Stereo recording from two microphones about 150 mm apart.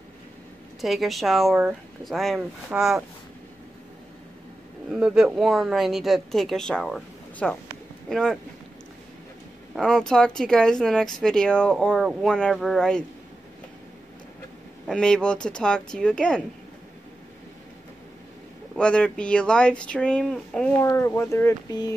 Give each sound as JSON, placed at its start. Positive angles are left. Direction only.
{"t": 0.7, "sound": "speech", "side_deg": 0}
{"t": 4.9, "sound": "speech", "side_deg": -5}
{"t": 9.8, "sound": "speech", "side_deg": 5}
{"t": 14.9, "sound": "speech", "side_deg": 5}
{"t": 18.8, "sound": "speech", "side_deg": 5}
{"t": 20.8, "sound": "speech", "side_deg": 20}